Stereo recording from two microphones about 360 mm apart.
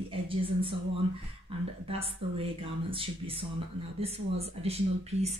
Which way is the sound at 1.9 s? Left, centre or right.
Centre.